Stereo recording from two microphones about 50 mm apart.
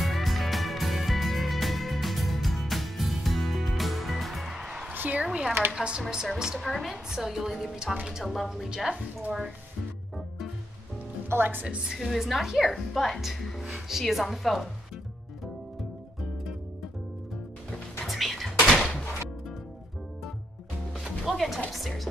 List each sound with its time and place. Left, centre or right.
0.0 s music: centre
4.6 s music: centre
4.9 s a sound: right
5.2 s a woman's voice: centre
6.6 s a woman's voice: centre
8.2 s speech: centre
8.6 s a woman's voice: centre
11.2 s speech: right
11.6 s a woman's voice: centre
12.0 s speech: centre
18.0 s a sound: centre
21.3 s music: centre
21.6 s speech: centre